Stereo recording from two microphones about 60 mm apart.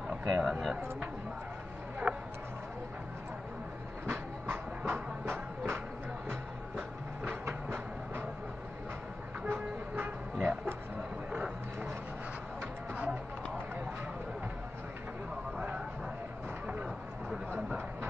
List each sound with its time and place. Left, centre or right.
0.3 s speech: centre
2.1 s a sound: centre
4.1 s train: right
9.5 s train: right
10.3 s a sound: centre
12.9 s music: right